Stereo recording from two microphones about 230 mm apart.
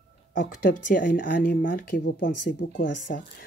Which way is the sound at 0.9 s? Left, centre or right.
Left.